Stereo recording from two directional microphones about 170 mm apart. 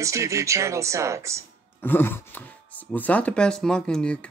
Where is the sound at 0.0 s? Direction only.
20° right (ahead or behind).